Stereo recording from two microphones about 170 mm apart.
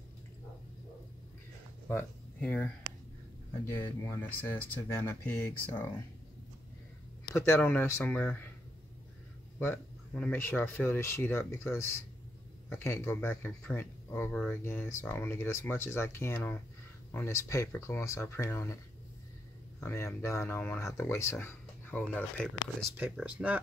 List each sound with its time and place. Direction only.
1.9 s speech: 10° left (ahead or behind)
7.3 s speech: 15° left (ahead or behind)
9.6 s speech: 10° left (ahead or behind)
19.8 s speech: 15° left (ahead or behind)
22.9 s speech: 5° right (ahead or behind)